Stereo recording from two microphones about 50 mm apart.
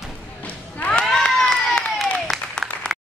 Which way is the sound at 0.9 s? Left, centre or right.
Centre.